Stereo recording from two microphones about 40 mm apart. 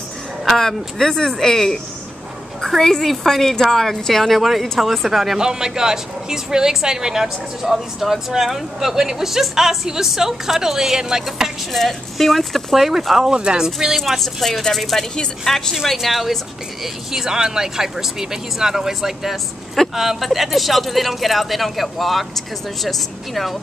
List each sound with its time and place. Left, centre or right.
0.6 s a woman's voice: centre
5.4 s speech: centre
11.7 s speech: centre
13.3 s speech: right
13.9 s speech: centre
14.4 s a woman's voice: centre
15.9 s speech: centre